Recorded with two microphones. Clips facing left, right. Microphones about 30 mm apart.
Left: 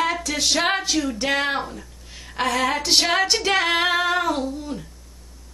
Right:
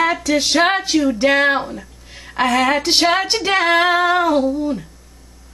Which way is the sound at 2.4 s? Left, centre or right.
Right.